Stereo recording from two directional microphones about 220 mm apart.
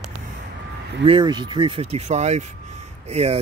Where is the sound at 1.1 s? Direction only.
20° right (ahead or behind).